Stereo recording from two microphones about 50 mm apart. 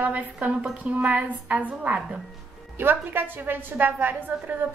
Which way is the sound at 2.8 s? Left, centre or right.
Right.